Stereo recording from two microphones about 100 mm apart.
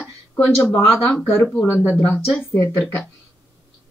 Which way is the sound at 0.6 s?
5° left (ahead or behind).